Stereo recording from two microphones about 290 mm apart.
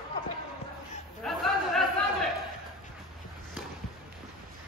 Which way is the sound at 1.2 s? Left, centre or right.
Centre.